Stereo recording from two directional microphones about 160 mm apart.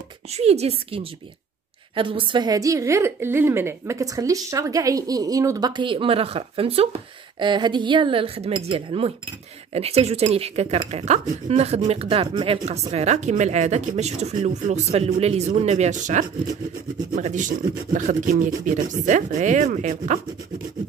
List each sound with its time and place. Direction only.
0.3 s a woman's voice: 40° right (ahead or behind)